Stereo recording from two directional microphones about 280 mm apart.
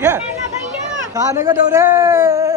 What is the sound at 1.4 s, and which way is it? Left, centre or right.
A man's voice, centre.